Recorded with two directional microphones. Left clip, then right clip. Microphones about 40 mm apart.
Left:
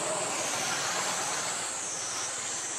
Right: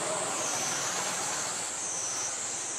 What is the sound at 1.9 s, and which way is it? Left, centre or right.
Vehicle, left.